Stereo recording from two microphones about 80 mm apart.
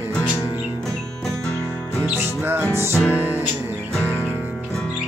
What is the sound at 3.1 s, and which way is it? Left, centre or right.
Music, right.